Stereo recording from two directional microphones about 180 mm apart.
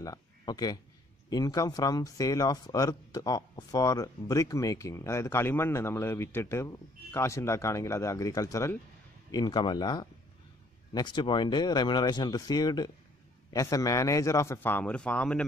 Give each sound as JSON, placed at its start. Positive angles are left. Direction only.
{"t": 0.0, "sound": "speech", "side_deg": 20}